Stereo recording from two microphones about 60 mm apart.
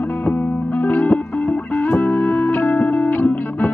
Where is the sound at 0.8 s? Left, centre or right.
Left.